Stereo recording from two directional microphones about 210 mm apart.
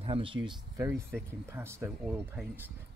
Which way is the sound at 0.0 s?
25° right (ahead or behind).